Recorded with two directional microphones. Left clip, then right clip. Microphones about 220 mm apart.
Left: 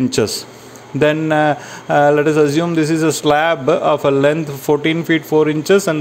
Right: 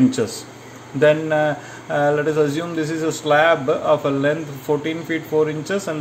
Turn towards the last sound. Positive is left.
turn(degrees=40)  # may be behind; listen again after turning